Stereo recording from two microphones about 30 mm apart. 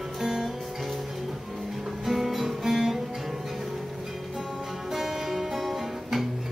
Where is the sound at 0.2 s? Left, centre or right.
Centre.